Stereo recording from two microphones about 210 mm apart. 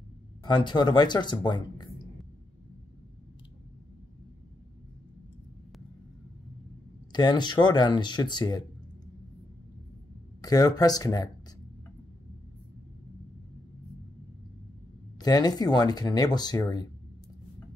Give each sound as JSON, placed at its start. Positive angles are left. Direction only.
{"t": 0.4, "sound": "speech", "side_deg": 20}
{"t": 7.1, "sound": "speech", "side_deg": 20}
{"t": 10.4, "sound": "speech", "side_deg": 15}
{"t": 15.1, "sound": "speech", "side_deg": 20}